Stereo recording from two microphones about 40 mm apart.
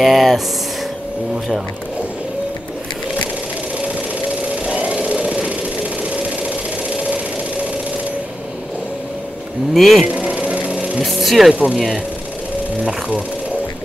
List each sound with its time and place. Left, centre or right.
0.0 s speech: centre
4.6 s a sound: right
7.0 s a sound: right
9.8 s speech: centre
10.4 s music: right
11.1 s speech: centre
11.5 s speech: right